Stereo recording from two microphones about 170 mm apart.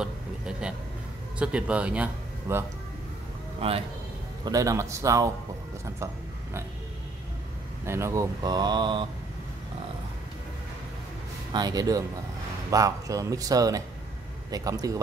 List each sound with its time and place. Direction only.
0.0 s a sound: 5° right (ahead or behind)
1.4 s speech: 5° right (ahead or behind)
3.6 s a man's voice: 35° right (ahead or behind)
4.5 s speech: 20° right (ahead or behind)
7.8 s speech: 15° right (ahead or behind)
11.5 s speech: 25° right (ahead or behind)